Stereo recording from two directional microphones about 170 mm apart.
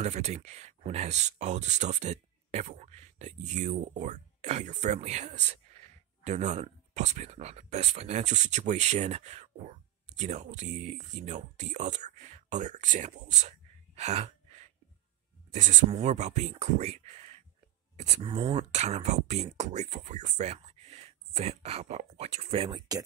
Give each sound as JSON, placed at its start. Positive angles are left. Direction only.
{"t": 0.0, "sound": "speech", "side_deg": -40}